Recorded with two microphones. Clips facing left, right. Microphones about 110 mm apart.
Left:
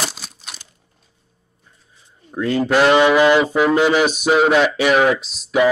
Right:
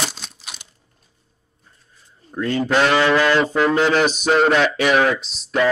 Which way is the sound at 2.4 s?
Centre (ahead or behind).